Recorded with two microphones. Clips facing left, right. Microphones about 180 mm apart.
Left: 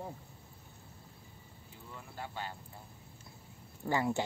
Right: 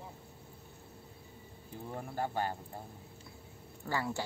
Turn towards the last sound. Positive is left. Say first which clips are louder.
# left 4 dB
turn(degrees=20)  # may be behind; listen again after turning